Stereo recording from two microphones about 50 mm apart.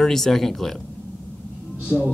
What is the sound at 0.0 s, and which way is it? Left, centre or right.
Speech, centre.